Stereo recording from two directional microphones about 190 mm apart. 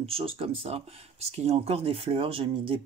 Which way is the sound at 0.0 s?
30° right (ahead or behind).